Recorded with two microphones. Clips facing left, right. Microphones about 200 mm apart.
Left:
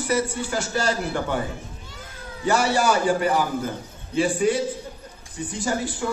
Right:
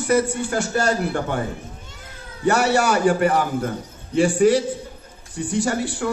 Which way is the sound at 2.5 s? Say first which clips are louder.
Right 2 dB; 65° right (ahead or behind).